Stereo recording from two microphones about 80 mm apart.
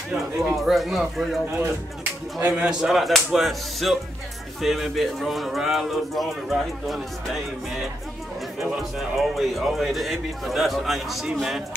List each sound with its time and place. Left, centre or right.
0.4 s a man's voice: centre
2.4 s a man's voice: centre
2.9 s a man's voice: centre
8.5 s a man's voice: centre